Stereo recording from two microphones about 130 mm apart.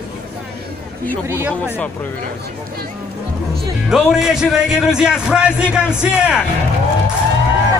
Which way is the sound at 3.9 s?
5° right (ahead or behind).